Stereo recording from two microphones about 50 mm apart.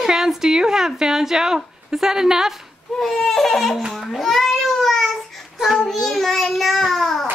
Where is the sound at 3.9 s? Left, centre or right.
Centre.